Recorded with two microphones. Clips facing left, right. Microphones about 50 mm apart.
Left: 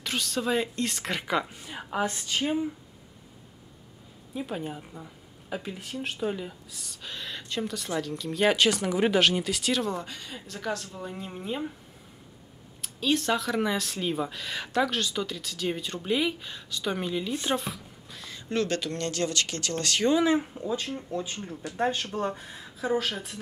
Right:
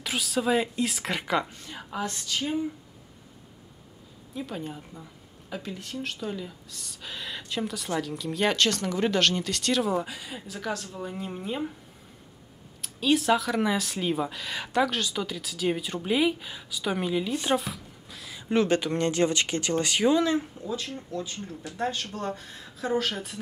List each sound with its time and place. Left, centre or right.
0.0 s speech: centre
4.4 s speech: centre
6.7 s speech: centre
12.8 s speech: centre
18.5 s speech: centre
20.2 s speech: centre
21.4 s speech: centre